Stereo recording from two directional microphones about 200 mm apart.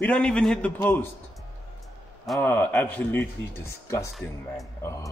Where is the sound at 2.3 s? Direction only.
10° left (ahead or behind).